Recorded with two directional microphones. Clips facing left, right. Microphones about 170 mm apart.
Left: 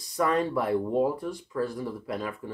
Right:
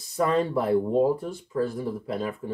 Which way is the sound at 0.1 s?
25° right (ahead or behind).